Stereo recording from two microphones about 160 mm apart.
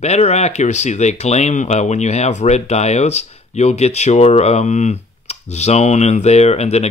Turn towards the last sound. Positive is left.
turn(degrees=40)  # may be behind; listen again after turning